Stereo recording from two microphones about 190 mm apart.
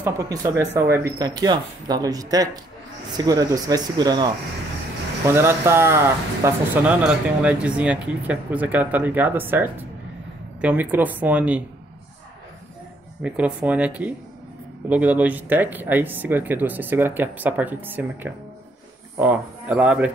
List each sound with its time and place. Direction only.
0.0 s speech: 15° right (ahead or behind)
5.3 s speech: 15° right (ahead or behind)
13.2 s speech: 5° right (ahead or behind)